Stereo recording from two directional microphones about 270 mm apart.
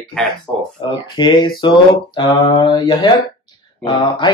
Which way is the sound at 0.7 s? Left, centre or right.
Centre.